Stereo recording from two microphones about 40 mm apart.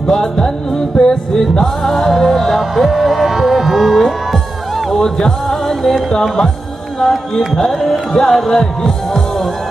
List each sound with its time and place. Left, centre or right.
0.0 s music: centre
1.9 s music: centre
5.2 s music: centre
5.8 s music: centre